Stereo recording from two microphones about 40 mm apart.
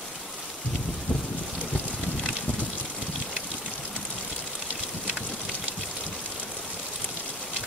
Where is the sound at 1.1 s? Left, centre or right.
Left.